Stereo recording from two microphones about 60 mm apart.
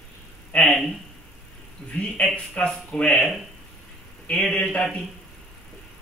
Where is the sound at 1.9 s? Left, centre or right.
Centre.